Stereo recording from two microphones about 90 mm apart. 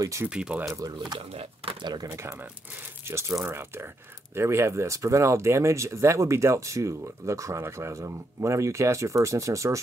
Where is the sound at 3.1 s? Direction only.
30° right (ahead or behind).